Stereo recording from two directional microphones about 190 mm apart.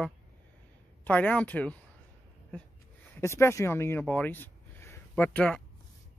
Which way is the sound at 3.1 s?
15° left (ahead or behind).